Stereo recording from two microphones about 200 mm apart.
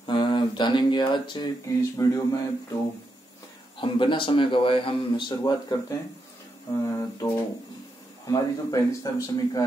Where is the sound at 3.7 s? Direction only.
25° left (ahead or behind).